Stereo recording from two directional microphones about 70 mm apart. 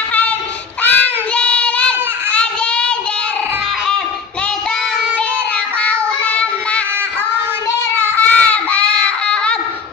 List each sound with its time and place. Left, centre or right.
0.8 s child singing: centre
5.8 s child singing: centre
8.0 s child singing: left